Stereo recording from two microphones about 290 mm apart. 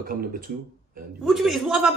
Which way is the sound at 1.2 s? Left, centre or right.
Centre.